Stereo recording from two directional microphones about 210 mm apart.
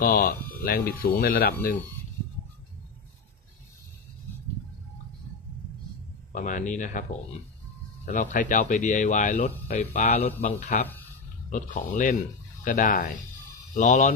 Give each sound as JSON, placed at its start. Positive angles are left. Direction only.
{"t": 0.0, "sound": "speech", "side_deg": 45}
{"t": 6.3, "sound": "speech", "side_deg": 35}
{"t": 8.1, "sound": "speech", "side_deg": 35}